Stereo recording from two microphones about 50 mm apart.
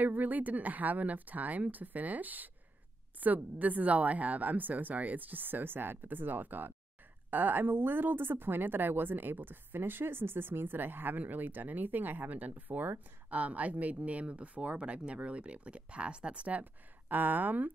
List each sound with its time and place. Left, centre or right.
0.0 s a woman's voice: right
17.1 s a woman's voice: right